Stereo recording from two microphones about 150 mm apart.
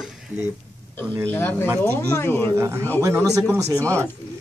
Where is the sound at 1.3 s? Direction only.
15° left (ahead or behind).